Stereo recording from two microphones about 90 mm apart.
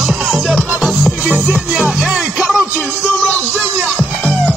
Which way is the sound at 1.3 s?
15° right (ahead or behind).